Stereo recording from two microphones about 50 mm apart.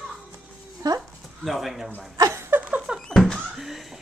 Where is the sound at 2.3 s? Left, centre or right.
Right.